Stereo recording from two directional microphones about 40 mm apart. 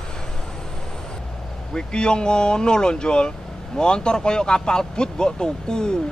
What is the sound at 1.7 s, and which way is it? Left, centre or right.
Speech, left.